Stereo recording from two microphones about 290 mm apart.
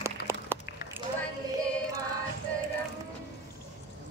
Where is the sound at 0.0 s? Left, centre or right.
Centre.